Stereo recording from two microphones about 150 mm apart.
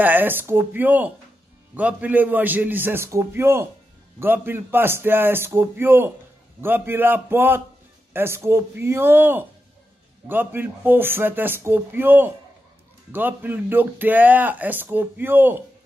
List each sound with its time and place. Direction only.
0.0 s speech: 10° right (ahead or behind)